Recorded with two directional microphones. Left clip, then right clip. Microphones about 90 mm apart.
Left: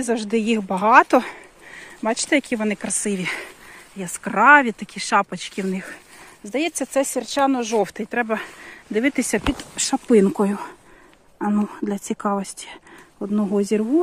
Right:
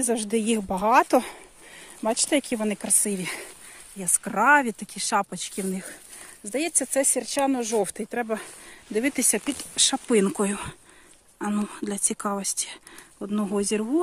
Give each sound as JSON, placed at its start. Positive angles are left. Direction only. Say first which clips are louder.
{"t": 0.0, "sound": "a woman's voice", "louder": "left 3 dB", "side_deg": -40}
{"t": 0.7, "sound": "speech", "louder": "left 6 dB", "side_deg": -20}
{"t": 4.0, "sound": "speech", "louder": "left 6 dB", "side_deg": 0}
{"t": 6.4, "sound": "speech", "louder": "left 4 dB", "side_deg": -35}
{"t": 7.8, "sound": "speech", "louder": "left 5 dB", "side_deg": -25}
{"t": 9.2, "sound": "speech", "louder": "left 5 dB", "side_deg": 0}
{"t": 11.8, "sound": "speech", "louder": "left 4 dB", "side_deg": 10}
{"t": 13.2, "sound": "speech", "louder": "left 5 dB", "side_deg": -5}
{"t": 13.6, "sound": "speech", "louder": "left 5 dB", "side_deg": 10}